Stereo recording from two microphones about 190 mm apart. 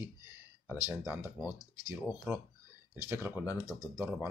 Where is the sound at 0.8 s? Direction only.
10° right (ahead or behind).